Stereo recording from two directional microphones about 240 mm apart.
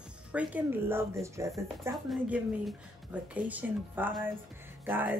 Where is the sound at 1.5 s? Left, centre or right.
Centre.